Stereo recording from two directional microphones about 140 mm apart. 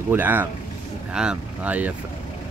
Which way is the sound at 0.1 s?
15° right (ahead or behind).